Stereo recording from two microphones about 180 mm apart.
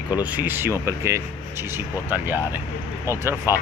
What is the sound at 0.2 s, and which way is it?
Speech, 10° right (ahead or behind).